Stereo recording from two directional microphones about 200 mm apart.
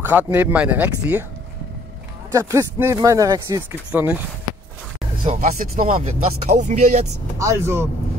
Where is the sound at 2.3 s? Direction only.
15° right (ahead or behind).